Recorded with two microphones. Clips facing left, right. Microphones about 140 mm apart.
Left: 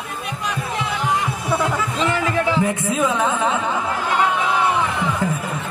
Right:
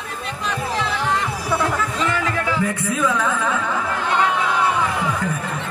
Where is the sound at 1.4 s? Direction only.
20° left (ahead or behind).